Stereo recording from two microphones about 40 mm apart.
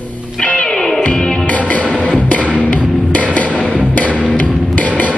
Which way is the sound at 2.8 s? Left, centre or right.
Centre.